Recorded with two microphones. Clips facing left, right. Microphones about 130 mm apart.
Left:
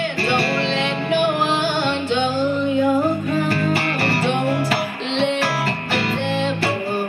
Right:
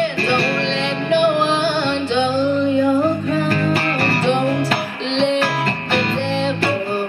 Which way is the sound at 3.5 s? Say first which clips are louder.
Right 2 dB; 10° left (ahead or behind).